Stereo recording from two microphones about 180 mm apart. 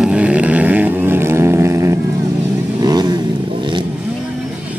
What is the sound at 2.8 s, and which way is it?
Vehicle, 20° right (ahead or behind).